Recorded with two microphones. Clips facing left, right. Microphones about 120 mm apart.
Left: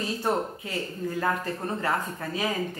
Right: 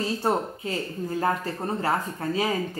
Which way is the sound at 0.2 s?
30° right (ahead or behind).